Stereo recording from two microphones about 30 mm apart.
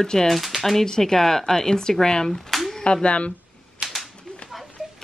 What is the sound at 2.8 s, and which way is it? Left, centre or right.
Speech, left.